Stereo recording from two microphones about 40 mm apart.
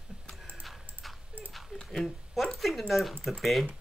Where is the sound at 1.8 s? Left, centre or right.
Centre.